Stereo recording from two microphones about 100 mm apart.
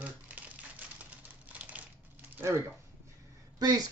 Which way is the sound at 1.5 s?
15° right (ahead or behind).